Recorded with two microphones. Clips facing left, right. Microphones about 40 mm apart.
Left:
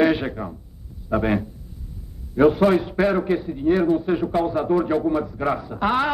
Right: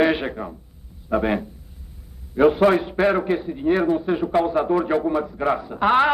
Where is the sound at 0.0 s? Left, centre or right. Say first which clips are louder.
Even; centre.